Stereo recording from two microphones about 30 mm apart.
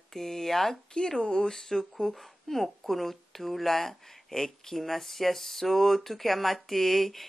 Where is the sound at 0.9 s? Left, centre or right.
Left.